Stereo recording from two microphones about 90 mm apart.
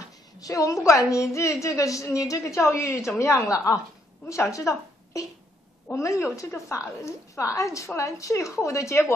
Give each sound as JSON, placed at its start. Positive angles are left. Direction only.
{"t": 0.4, "sound": "a woman's voice", "side_deg": 40}